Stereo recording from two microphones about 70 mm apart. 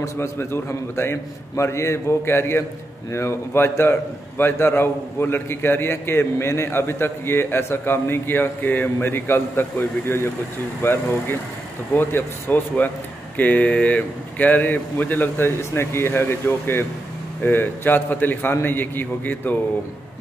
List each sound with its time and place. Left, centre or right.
0.0 s a man's voice: left